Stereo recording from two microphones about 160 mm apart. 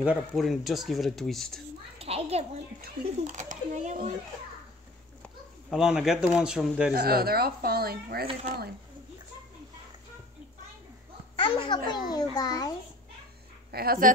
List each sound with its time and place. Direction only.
0.0 s speech: 10° right (ahead or behind)
2.0 s a child's voice: 40° right (ahead or behind)
5.2 s a sound: 5° right (ahead or behind)
6.3 s speech: 5° right (ahead or behind)
6.9 s speech: 70° right (ahead or behind)
11.3 s a child's voice: 30° left (ahead or behind)
13.7 s speech: 70° right (ahead or behind)